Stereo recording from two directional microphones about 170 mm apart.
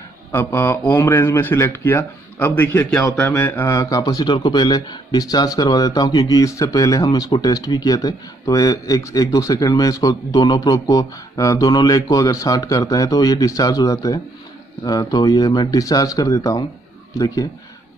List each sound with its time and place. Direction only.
0.3 s speech: 15° left (ahead or behind)